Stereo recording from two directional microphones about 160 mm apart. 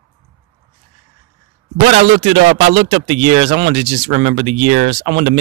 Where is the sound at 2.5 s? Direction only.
35° right (ahead or behind).